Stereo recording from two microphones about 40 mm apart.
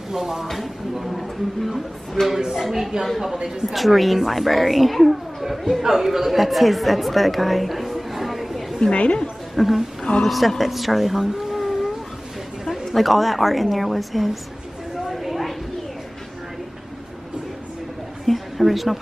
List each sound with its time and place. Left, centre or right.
0.1 s speech: centre
0.5 s a woman's voice: centre
8.9 s a woman's voice: left
9.6 s a woman's voice: centre
15.0 s a sound: centre
18.2 s a sound: centre